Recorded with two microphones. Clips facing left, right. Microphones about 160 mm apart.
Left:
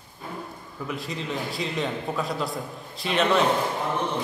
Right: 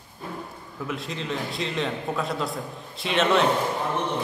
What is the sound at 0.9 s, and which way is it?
A man's voice, centre (ahead or behind).